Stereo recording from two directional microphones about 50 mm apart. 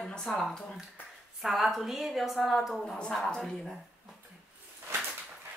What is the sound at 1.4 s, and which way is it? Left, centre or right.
Speech, centre.